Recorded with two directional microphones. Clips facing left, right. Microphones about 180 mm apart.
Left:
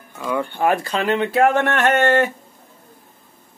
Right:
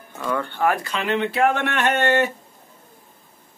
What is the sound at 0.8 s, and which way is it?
Speech, 40° left (ahead or behind).